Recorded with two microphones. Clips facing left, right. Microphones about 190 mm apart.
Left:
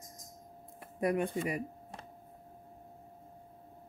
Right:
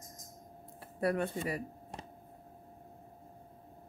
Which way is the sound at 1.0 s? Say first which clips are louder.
Left 1 dB; 15° left (ahead or behind).